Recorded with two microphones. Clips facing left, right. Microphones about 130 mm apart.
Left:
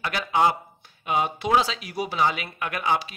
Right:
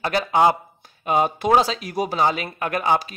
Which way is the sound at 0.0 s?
40° right (ahead or behind).